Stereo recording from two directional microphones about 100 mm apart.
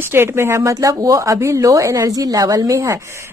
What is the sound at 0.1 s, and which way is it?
Speech, 25° right (ahead or behind).